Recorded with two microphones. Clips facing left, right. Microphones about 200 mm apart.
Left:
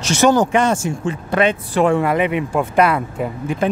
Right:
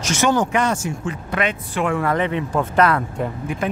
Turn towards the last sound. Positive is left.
turn(degrees=10)  # may be behind; listen again after turning